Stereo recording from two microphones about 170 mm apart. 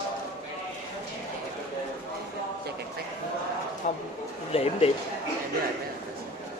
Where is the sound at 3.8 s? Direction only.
45° left (ahead or behind).